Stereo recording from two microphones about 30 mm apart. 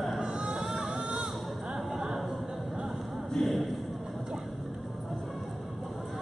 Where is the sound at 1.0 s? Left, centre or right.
Right.